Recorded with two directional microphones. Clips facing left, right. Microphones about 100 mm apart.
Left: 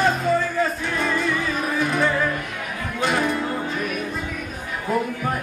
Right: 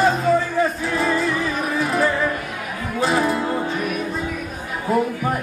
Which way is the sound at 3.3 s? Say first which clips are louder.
Right 3 dB; 20° right (ahead or behind).